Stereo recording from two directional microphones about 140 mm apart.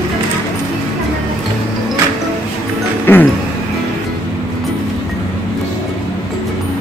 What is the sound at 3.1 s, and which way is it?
Music, 15° left (ahead or behind).